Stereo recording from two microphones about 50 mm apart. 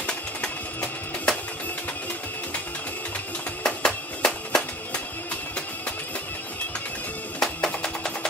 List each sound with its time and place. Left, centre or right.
0.0 s music: centre
3.6 s music: centre
7.3 s music: centre